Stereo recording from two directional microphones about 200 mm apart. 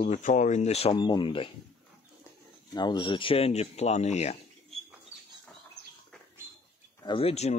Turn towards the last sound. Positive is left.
turn(degrees=30)  # may be behind; listen again after turning